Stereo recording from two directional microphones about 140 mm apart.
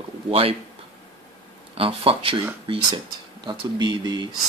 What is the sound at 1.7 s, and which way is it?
Speech, 40° right (ahead or behind).